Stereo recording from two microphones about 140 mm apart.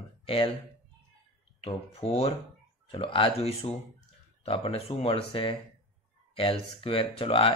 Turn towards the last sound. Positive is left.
turn(degrees=40)  # may be behind; listen again after turning